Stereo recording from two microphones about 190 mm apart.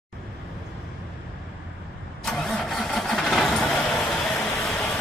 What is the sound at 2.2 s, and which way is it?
Engine starting, centre (ahead or behind).